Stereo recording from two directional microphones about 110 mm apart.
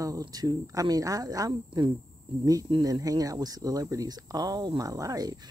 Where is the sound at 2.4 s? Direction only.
35° right (ahead or behind).